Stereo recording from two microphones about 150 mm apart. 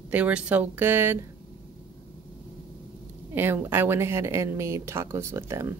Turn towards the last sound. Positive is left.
turn(degrees=-15)  # may be behind; listen again after turning